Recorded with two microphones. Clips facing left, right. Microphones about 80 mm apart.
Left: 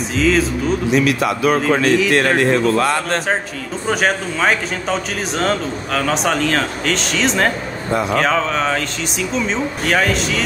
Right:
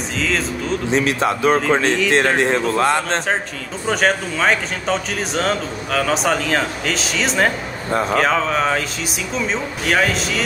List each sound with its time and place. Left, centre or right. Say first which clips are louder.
0.2 s speech: left 6 dB; centre
0.8 s a man's voice: left 1 dB; right
3.8 s speech: even; centre